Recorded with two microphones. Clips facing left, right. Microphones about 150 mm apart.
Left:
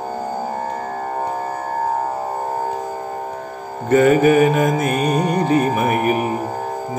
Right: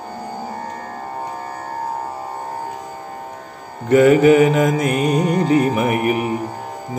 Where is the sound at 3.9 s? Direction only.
20° right (ahead or behind).